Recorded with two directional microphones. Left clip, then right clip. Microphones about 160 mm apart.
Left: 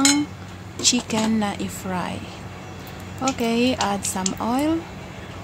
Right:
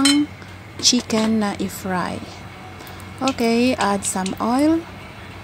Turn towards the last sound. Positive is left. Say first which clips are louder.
# right 4 dB
turn(degrees=-20)  # may be behind; listen again after turning